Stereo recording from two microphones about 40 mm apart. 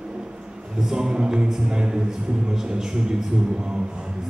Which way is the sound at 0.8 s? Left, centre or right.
Centre.